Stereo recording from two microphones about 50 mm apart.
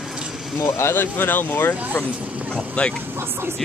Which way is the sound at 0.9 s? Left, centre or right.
Left.